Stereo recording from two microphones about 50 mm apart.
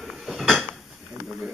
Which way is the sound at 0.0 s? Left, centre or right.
Centre.